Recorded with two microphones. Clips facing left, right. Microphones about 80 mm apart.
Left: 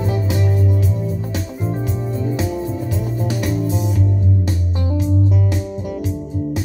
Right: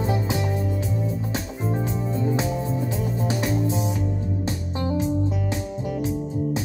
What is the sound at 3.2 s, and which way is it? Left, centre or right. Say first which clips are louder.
Music: left 2 dB; right.